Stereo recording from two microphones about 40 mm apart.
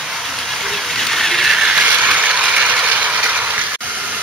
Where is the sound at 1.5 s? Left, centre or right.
Right.